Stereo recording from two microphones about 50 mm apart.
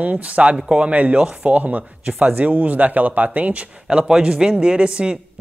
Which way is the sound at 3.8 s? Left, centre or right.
Centre.